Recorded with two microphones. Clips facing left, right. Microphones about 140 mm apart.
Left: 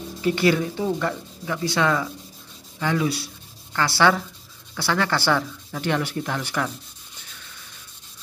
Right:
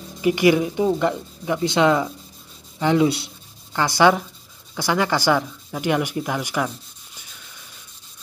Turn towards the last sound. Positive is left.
turn(degrees=-10)  # may be behind; listen again after turning